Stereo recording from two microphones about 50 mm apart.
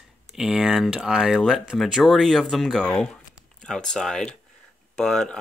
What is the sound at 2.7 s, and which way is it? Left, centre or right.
Speech, centre.